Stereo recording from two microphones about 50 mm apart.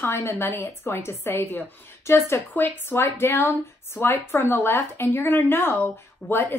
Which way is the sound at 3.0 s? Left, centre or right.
Left.